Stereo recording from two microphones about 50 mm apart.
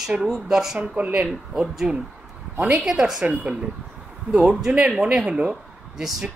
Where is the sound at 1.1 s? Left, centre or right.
Centre.